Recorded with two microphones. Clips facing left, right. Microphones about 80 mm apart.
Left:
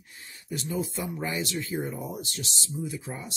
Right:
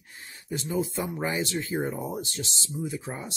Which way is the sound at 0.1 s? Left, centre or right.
Right.